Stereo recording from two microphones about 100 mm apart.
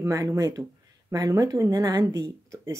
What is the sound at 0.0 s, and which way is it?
Speech, 30° right (ahead or behind).